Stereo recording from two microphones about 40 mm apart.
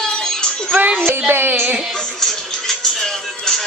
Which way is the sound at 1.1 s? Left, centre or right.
Right.